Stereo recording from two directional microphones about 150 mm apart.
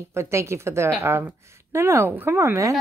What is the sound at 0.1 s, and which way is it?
A woman's voice, 20° right (ahead or behind).